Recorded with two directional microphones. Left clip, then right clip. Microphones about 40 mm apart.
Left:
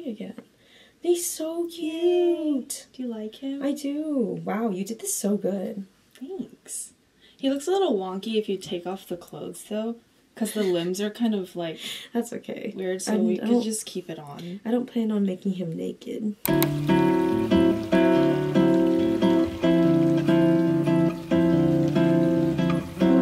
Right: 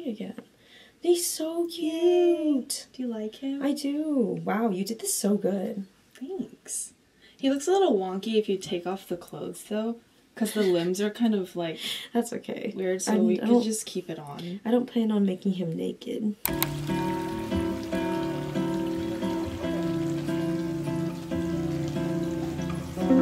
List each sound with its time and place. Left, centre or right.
0.0 s a sound: centre
1.0 s speech: centre
4.1 s speech: centre
7.4 s speech: centre
9.3 s speech: centre
10.4 s speech: centre
11.1 s speech: centre
11.7 s speech: centre
13.4 s speech: centre
14.3 s speech: centre
16.4 s music: centre